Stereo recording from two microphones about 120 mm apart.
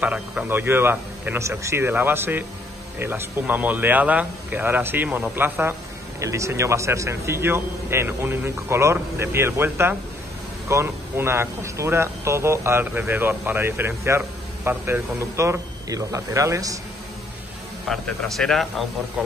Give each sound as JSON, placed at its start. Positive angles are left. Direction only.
{"t": 0.0, "sound": "speech", "side_deg": -10}
{"t": 17.8, "sound": "speech", "side_deg": 5}